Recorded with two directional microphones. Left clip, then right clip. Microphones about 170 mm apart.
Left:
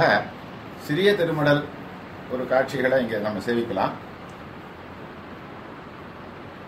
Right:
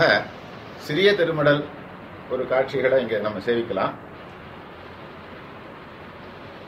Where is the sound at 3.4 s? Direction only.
20° right (ahead or behind).